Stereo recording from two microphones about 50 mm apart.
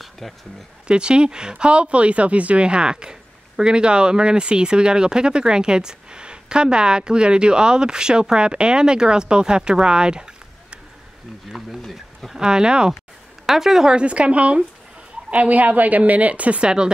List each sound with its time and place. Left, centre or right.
0.2 s speech: centre
0.8 s speech: centre
11.5 s speech: centre
12.4 s speech: centre
13.9 s a woman's voice: right